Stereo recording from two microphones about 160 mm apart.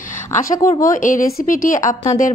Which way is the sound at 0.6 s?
20° left (ahead or behind).